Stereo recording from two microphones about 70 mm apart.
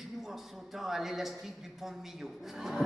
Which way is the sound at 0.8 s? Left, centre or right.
Centre.